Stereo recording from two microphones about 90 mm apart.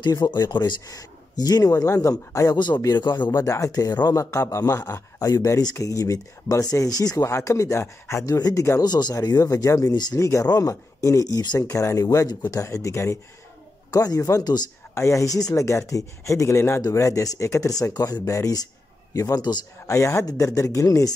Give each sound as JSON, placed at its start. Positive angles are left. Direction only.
{"t": 0.1, "sound": "speech", "side_deg": 50}
{"t": 2.8, "sound": "speech", "side_deg": 50}
{"t": 3.3, "sound": "speech", "side_deg": 40}
{"t": 4.2, "sound": "speech", "side_deg": 35}
{"t": 8.4, "sound": "speech", "side_deg": 45}
{"t": 13.8, "sound": "speech", "side_deg": 40}